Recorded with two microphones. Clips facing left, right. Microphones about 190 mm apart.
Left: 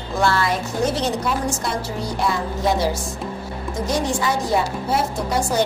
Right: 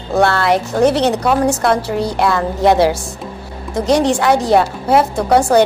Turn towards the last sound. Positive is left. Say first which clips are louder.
# right 10 dB
turn(degrees=-65)  # may be behind; listen again after turning